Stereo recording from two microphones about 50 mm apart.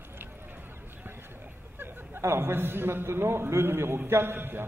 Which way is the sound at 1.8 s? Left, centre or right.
Right.